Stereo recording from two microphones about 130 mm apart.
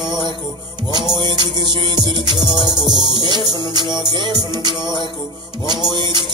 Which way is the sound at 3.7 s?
35° right (ahead or behind).